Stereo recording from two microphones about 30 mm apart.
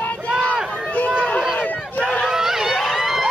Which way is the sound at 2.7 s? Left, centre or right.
Centre.